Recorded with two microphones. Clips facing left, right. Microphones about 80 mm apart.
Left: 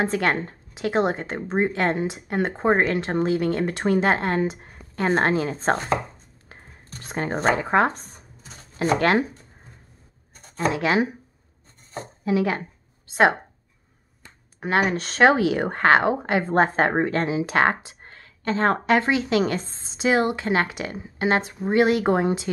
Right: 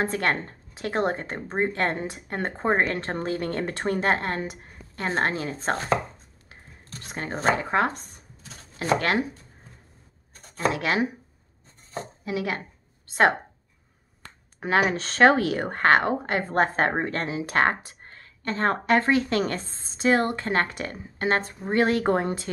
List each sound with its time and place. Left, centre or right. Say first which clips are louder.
0.0 s speech: left 3 dB; centre
7.1 s speech: left 3 dB; left
10.7 s speech: left 5 dB; left
12.3 s speech: left 7 dB; left
14.6 s speech: left 1 dB; centre